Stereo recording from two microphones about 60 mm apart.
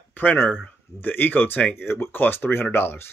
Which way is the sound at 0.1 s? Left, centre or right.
Left.